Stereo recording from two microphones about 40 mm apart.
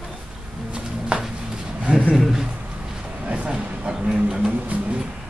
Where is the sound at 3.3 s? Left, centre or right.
Right.